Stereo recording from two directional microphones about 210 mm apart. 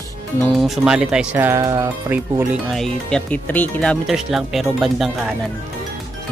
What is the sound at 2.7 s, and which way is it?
Speech, 5° left (ahead or behind).